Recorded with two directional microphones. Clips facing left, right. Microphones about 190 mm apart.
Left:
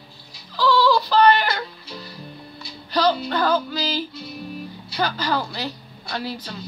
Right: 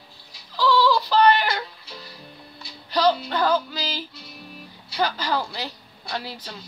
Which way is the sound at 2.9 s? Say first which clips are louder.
Even; 20° right (ahead or behind).